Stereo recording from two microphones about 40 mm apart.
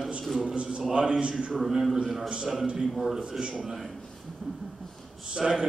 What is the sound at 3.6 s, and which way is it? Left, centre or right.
Speech, centre.